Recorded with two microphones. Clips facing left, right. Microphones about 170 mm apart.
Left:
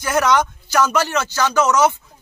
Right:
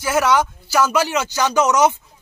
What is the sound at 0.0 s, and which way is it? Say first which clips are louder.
Speech: even; 5° right (ahead or behind).